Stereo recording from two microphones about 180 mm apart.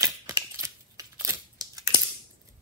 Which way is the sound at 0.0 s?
15° right (ahead or behind).